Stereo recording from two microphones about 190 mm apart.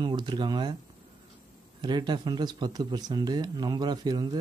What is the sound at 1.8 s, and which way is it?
Speech, 25° right (ahead or behind).